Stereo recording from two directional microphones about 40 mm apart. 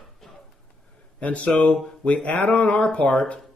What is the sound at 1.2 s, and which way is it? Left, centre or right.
Speech, left.